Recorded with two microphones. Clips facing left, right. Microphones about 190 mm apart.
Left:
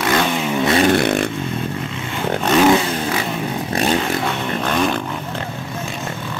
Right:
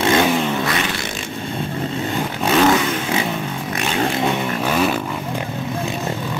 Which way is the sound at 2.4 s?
Centre (ahead or behind).